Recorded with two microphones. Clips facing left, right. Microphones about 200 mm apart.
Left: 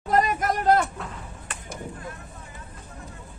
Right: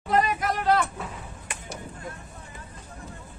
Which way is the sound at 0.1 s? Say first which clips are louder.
Left 1 dB; 45° left (ahead or behind).